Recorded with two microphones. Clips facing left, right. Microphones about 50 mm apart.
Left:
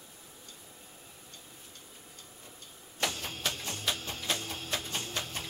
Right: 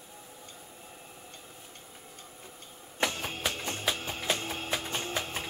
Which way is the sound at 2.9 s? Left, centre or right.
Right.